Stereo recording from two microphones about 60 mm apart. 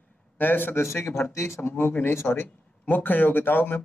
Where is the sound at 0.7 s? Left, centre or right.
Left.